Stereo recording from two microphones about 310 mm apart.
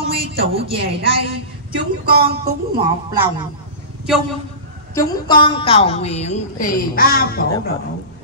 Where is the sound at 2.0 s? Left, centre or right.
Right.